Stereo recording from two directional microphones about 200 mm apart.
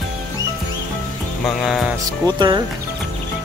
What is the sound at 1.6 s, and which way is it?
Speech, centre (ahead or behind).